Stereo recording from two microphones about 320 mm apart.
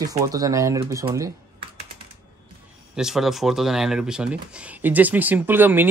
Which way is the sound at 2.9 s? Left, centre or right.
Centre.